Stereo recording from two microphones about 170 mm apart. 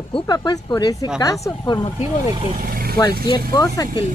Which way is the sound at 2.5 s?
60° right (ahead or behind).